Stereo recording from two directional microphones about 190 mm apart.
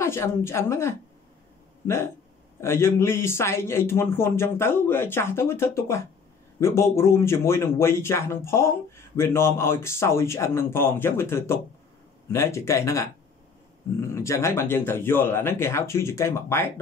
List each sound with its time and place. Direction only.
0.0 s speech: 15° left (ahead or behind)
2.6 s speech: 15° left (ahead or behind)
14.1 s speech: 15° left (ahead or behind)